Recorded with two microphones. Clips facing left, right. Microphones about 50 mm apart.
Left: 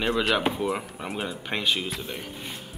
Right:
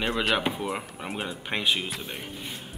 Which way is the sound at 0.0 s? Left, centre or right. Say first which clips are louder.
Left 2 dB; centre.